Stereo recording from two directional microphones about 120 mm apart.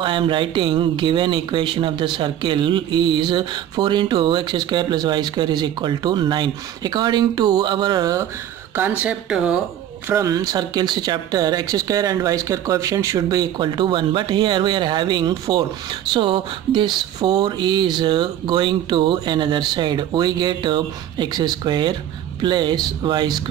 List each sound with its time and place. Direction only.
0.0 s speech: 45° right (ahead or behind)
8.7 s speech: 15° right (ahead or behind)
10.1 s speech: 30° right (ahead or behind)